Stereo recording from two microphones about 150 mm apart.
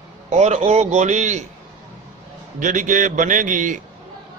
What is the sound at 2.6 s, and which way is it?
A man's voice, 60° right (ahead or behind).